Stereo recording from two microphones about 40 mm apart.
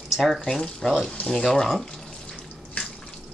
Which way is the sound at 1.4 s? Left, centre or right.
Centre.